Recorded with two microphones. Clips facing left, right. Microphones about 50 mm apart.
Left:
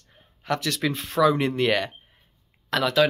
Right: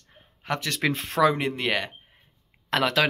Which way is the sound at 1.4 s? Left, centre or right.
Centre.